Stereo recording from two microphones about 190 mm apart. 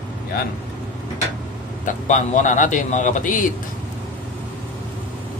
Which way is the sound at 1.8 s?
40° left (ahead or behind).